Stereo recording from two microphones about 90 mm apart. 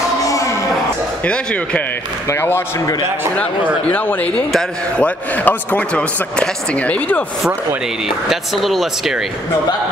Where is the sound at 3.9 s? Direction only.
15° left (ahead or behind).